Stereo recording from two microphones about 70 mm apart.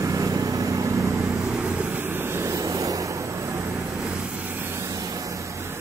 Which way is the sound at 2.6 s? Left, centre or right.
Right.